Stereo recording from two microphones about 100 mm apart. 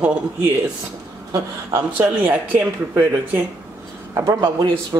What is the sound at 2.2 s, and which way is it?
Speech, 20° right (ahead or behind).